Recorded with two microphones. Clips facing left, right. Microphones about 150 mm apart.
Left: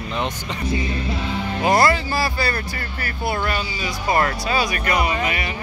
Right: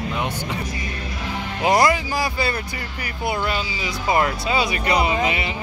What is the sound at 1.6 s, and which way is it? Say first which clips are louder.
Speech: even; 15° right (ahead or behind).